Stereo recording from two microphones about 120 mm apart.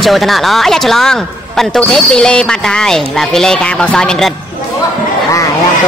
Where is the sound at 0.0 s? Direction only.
Centre (ahead or behind).